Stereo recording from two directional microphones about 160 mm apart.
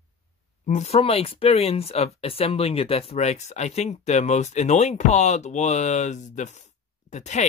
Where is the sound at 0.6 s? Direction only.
45° left (ahead or behind).